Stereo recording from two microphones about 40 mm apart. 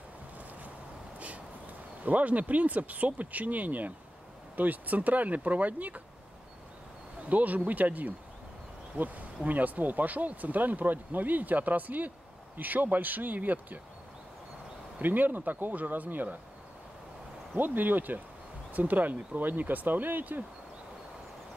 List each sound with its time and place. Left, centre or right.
2.0 s speech: right
7.2 s speech: right
15.0 s speech: right
17.6 s speech: right